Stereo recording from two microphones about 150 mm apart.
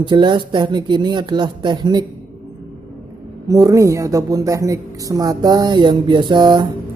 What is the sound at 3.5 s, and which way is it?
Speech, 25° right (ahead or behind).